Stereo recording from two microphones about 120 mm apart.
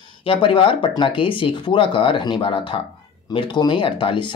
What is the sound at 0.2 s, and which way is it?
Speech, 45° left (ahead or behind).